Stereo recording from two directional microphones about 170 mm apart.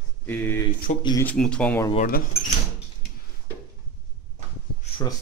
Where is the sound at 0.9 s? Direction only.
50° left (ahead or behind).